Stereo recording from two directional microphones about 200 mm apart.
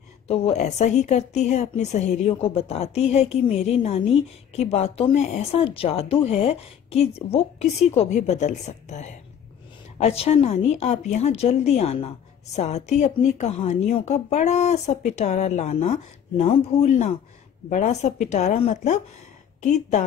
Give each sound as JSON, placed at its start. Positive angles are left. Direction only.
{"t": 0.3, "sound": "speech", "side_deg": 35}